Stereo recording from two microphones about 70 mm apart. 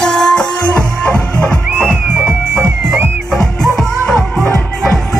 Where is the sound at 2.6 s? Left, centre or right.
Right.